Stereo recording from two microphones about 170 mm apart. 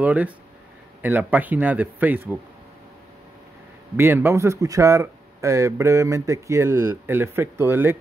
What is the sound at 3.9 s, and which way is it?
Speech, 15° right (ahead or behind).